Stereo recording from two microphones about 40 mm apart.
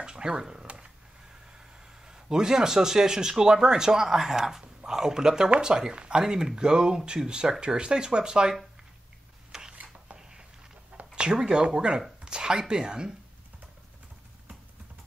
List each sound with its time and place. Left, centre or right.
0.0 s speech: centre
2.0 s speech: centre
9.5 s a sound: centre
11.1 s speech: right